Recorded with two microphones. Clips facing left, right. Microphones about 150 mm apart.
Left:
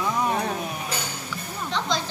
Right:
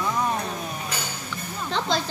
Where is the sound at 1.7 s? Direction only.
35° right (ahead or behind).